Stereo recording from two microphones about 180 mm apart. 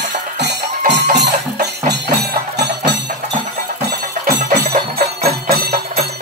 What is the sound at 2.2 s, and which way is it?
Music, 65° right (ahead or behind).